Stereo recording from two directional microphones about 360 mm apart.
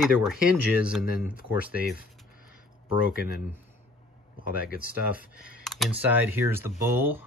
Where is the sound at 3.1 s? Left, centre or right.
Left.